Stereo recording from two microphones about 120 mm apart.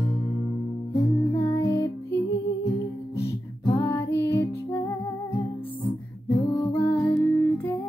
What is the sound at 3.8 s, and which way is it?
Music, 20° left (ahead or behind).